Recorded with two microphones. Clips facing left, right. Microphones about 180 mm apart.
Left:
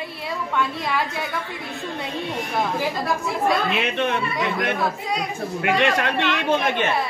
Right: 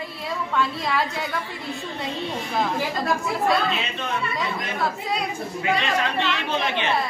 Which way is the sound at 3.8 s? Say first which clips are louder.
Left 6 dB; 65° left (ahead or behind).